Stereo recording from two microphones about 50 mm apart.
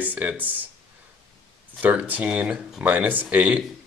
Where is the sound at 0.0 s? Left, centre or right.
Right.